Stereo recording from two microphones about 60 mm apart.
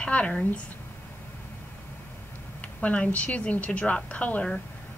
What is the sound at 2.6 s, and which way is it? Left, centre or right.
A woman's voice, left.